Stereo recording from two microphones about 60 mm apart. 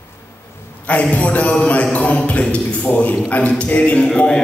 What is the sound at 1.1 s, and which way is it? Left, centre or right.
A man's voice, left.